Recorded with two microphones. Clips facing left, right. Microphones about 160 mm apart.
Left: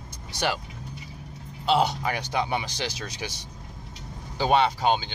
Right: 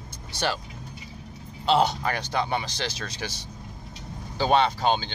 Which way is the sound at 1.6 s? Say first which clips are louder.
Right 1 dB; 10° left (ahead or behind).